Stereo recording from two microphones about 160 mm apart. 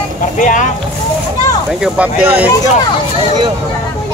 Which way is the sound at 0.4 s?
55° left (ahead or behind).